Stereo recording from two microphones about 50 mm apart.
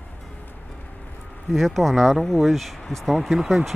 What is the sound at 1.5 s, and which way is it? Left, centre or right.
Speech, centre.